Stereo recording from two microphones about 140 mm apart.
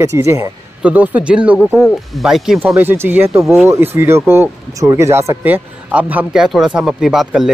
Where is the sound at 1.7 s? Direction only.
Centre (ahead or behind).